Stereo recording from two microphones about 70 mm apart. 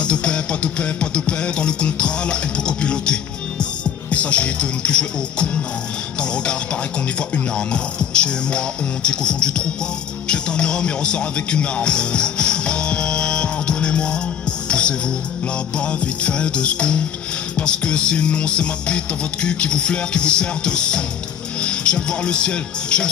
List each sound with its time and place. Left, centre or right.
0.0 s speech: centre
7.2 s speech: centre
14.7 s music: centre
15.8 s speech: centre